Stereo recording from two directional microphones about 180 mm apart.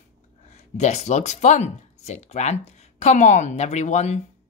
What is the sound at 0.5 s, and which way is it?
Speech, 40° left (ahead or behind).